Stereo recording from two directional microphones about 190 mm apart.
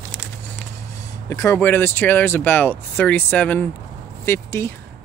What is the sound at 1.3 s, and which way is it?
Speech, 15° left (ahead or behind).